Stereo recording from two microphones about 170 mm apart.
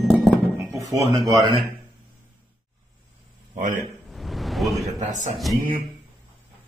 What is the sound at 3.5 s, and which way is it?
Speech, 50° right (ahead or behind).